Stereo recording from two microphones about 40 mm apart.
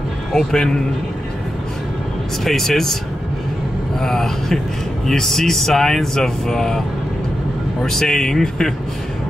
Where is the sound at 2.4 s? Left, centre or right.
Centre.